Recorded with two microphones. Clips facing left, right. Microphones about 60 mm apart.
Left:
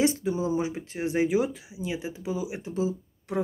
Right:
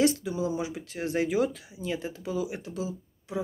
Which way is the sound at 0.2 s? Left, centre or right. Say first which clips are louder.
Left 3 dB; left.